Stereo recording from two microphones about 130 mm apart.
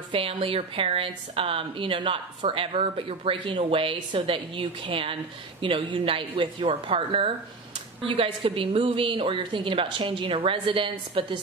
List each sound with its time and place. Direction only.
0.1 s a woman's voice: 45° right (ahead or behind)